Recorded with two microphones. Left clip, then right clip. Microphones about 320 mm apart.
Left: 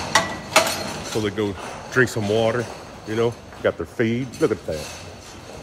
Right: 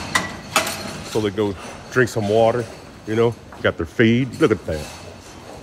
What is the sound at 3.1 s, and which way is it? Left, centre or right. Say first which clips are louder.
A man's voice: right 3 dB; right.